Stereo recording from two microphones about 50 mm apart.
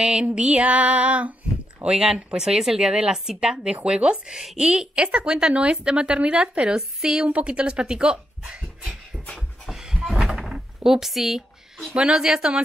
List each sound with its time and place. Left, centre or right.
0.0 s a woman's voice: centre
1.8 s a woman's voice: centre
7.2 s a woman's voice: right
9.7 s a sound: centre
10.2 s drawer open or close: centre
11.9 s speech: centre